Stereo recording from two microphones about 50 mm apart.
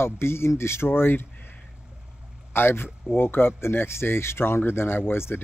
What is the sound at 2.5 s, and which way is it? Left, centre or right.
Speech, left.